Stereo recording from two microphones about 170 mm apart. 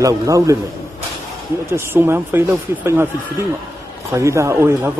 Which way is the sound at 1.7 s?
15° right (ahead or behind).